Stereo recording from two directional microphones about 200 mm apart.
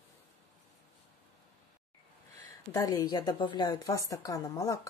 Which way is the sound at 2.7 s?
15° left (ahead or behind).